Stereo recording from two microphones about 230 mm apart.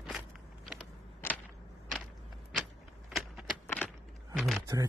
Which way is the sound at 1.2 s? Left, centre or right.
Centre.